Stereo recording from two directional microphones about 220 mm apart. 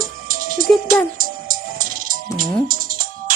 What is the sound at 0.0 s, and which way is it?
Music, 40° right (ahead or behind).